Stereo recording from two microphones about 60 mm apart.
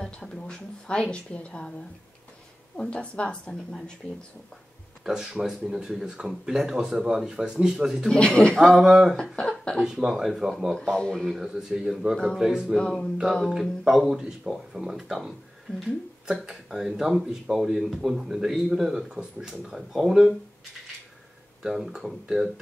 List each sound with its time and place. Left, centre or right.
0.0 s a woman's voice: centre
2.8 s a woman's voice: centre
5.0 s speech: centre
8.1 s a woman's voice: centre
8.5 s speech: centre
9.3 s a woman's voice: centre
9.8 s speech: centre
12.7 s speech: centre
21.6 s speech: centre